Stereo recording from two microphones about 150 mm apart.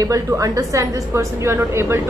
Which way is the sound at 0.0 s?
20° right (ahead or behind).